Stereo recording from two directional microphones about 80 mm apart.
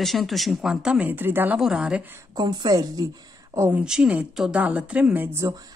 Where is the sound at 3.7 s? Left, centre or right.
Centre.